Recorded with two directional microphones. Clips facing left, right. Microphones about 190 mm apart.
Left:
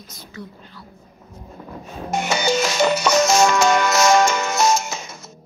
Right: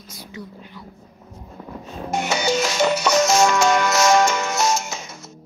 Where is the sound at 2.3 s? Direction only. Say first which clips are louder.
Left 1 dB; 60° left (ahead or behind).